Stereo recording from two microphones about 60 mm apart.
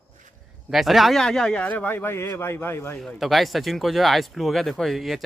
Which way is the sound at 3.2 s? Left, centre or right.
Centre.